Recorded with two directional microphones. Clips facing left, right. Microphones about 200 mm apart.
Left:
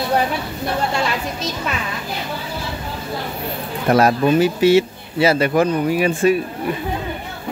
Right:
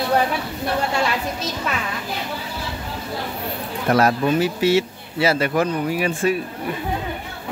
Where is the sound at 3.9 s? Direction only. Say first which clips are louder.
Left 3 dB; 20° left (ahead or behind).